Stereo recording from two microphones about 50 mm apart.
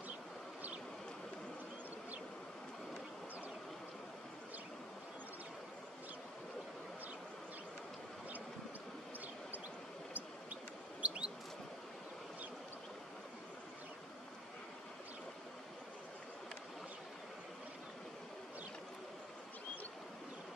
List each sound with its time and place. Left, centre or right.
11.0 s chirp: right